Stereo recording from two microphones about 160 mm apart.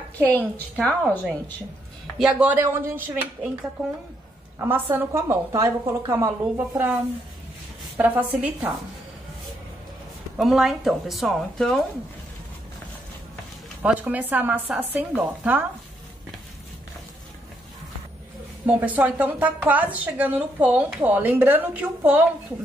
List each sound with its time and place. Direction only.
0.2 s a woman's voice: 10° left (ahead or behind)
2.1 s speech: 5° right (ahead or behind)
4.6 s a woman's voice: 15° right (ahead or behind)
8.0 s speech: 10° right (ahead or behind)
10.3 s speech: centre (ahead or behind)
13.8 s speech: 10° right (ahead or behind)
18.7 s speech: 10° right (ahead or behind)